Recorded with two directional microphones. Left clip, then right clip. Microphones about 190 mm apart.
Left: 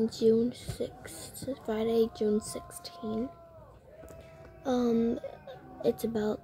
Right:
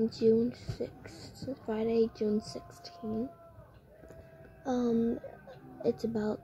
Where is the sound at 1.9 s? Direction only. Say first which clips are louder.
Left 2 dB; 25° left (ahead or behind).